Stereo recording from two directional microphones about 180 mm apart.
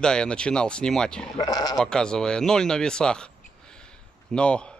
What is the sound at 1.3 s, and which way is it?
Speech, 20° left (ahead or behind).